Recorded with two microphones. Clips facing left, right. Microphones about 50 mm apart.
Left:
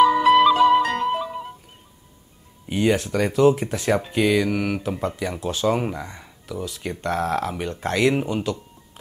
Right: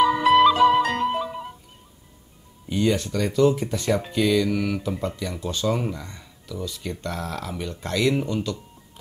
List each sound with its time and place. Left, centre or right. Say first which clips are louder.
0.0 s flute: left 2 dB; centre
2.7 s speech: left 2 dB; left
3.5 s speech: left 1 dB; left
4.1 s speech: even; left